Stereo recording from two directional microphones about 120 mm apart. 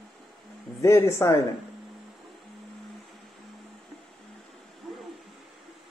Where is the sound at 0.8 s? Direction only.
20° left (ahead or behind).